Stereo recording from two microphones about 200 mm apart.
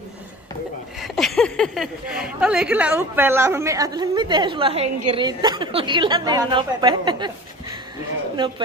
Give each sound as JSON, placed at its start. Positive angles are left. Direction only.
{"t": 1.0, "sound": "speech", "side_deg": 0}